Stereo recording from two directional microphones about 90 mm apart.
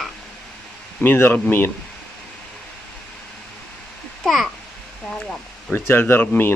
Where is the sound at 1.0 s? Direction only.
25° left (ahead or behind).